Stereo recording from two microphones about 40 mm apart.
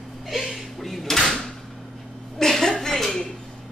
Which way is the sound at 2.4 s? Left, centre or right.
Centre.